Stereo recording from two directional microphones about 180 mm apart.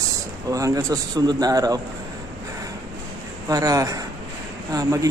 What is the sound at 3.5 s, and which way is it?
Speech, 20° right (ahead or behind).